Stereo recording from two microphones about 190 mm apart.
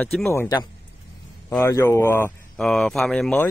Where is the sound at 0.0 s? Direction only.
Centre (ahead or behind).